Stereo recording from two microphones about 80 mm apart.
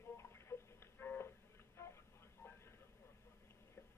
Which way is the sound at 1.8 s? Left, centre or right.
Left.